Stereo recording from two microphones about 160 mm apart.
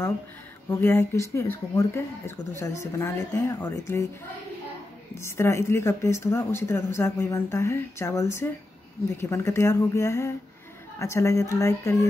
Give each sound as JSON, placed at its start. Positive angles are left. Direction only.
{"t": 0.7, "sound": "a woman's voice", "side_deg": 15}
{"t": 5.1, "sound": "a woman's voice", "side_deg": 15}